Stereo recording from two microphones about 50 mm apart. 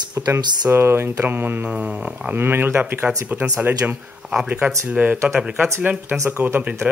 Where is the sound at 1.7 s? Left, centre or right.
Right.